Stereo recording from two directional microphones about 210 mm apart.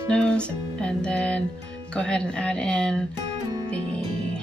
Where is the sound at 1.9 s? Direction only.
5° left (ahead or behind).